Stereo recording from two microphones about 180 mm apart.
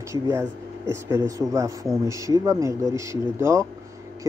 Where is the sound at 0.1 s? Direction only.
15° right (ahead or behind).